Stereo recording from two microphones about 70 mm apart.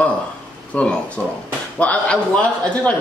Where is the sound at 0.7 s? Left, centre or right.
Centre.